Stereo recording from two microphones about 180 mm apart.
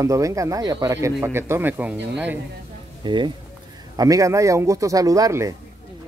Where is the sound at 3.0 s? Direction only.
25° right (ahead or behind).